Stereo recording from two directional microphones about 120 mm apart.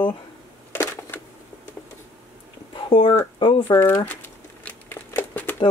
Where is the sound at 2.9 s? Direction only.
50° left (ahead or behind).